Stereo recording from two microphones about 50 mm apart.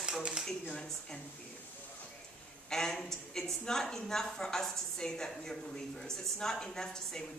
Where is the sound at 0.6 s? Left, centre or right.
Centre.